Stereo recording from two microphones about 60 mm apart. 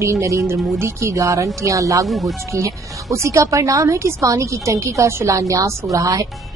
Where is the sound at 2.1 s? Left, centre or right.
Centre.